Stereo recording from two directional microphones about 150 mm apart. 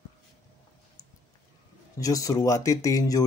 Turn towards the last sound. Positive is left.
turn(degrees=25)  # may be behind; listen again after turning